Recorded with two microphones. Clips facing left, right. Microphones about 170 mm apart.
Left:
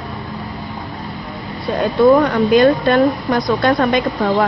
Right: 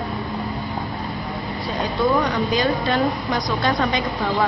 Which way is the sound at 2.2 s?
60° left (ahead or behind).